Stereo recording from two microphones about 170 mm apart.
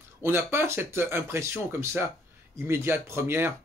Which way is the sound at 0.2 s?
15° right (ahead or behind).